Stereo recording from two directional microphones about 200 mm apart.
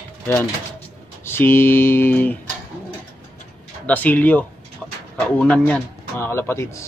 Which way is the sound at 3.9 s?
10° left (ahead or behind).